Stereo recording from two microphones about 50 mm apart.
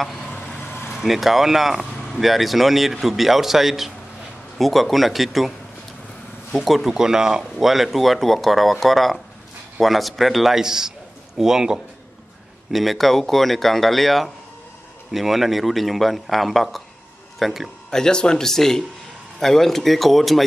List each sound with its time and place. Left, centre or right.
0.5 s vehicle: left
0.9 s speech: centre
6.5 s speech: centre
12.7 s speech: centre
17.9 s speech: centre